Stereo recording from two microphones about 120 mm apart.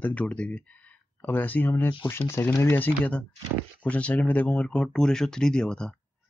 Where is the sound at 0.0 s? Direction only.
10° left (ahead or behind).